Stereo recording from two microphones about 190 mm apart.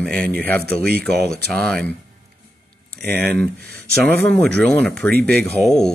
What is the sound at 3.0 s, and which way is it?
Speech, 10° left (ahead or behind).